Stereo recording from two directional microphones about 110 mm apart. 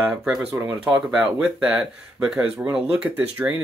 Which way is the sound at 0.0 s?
5° right (ahead or behind).